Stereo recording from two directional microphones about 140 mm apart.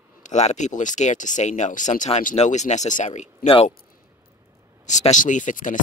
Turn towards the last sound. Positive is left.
turn(degrees=70)  # may be behind; listen again after turning